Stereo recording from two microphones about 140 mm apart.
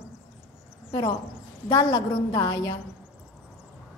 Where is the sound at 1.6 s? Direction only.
25° left (ahead or behind).